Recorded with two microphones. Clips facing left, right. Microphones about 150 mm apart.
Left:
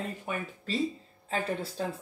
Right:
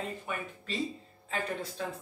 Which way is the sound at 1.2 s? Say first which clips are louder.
Left 3 dB; 35° left (ahead or behind).